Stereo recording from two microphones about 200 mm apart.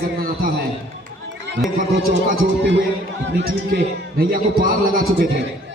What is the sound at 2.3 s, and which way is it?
A man's voice, 65° right (ahead or behind).